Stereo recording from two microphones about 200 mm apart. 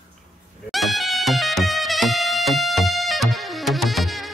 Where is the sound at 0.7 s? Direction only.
Centre (ahead or behind).